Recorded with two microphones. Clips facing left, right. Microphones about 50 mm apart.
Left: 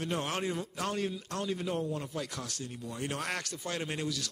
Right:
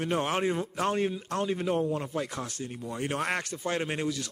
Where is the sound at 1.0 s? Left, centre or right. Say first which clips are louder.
Right 5 dB; right.